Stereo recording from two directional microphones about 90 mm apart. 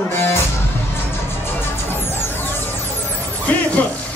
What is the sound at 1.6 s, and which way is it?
Music, 25° left (ahead or behind).